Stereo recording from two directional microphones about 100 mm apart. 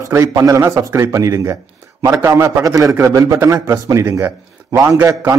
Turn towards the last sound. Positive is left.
turn(degrees=-30)  # may be behind; listen again after turning